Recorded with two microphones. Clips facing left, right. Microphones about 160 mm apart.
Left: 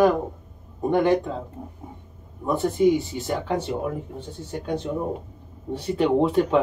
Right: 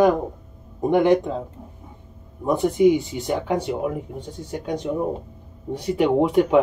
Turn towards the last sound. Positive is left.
turn(degrees=-15)  # may be behind; listen again after turning